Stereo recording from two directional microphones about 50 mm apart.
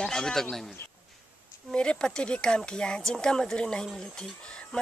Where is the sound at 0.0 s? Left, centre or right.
Centre.